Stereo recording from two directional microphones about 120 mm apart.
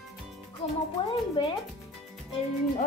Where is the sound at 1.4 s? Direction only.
40° left (ahead or behind).